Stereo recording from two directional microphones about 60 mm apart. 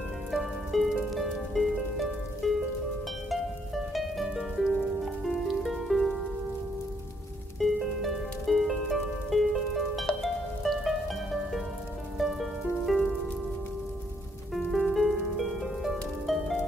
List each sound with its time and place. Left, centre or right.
0.3 s music: centre
7.5 s music: centre
14.5 s music: centre